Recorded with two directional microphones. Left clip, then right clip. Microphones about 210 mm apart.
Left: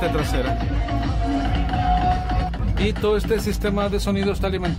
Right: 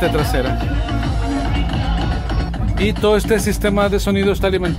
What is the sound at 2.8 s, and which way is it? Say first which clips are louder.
Speech: right 6 dB; 15° right (ahead or behind).